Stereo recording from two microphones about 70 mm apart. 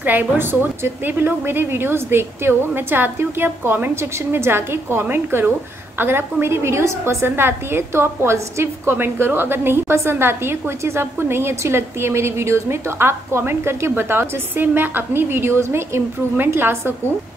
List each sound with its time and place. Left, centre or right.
0.0 s a woman's voice: right